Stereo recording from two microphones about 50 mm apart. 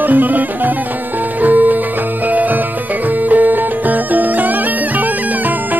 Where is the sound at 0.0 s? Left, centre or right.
Right.